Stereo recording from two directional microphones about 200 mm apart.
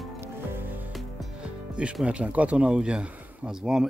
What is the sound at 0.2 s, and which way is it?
Speech, 10° right (ahead or behind).